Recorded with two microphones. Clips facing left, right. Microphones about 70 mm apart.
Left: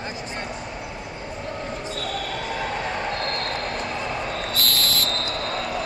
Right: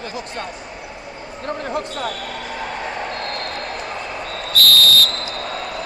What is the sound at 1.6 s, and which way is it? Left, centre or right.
Basketball bounce, right.